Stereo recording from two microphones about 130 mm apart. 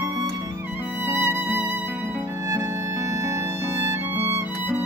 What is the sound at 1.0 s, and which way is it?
Music, 15° right (ahead or behind).